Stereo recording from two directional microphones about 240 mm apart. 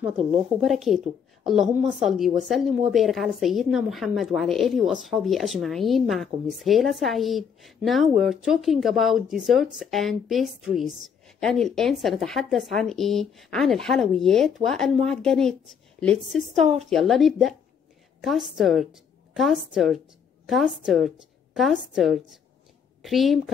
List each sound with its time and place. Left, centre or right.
0.0 s a woman's voice: centre